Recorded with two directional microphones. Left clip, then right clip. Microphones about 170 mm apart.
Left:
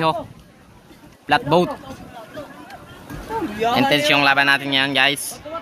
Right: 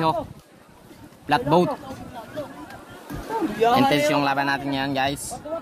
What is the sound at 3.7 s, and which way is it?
Speech, centre (ahead or behind).